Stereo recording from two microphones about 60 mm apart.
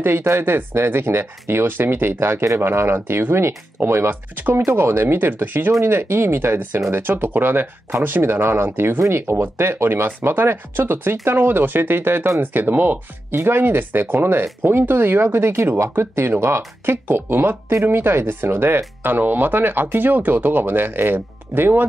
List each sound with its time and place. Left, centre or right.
0.0 s speech: right
5.7 s speech: right